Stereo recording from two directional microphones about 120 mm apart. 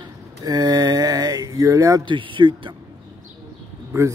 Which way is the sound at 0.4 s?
30° right (ahead or behind).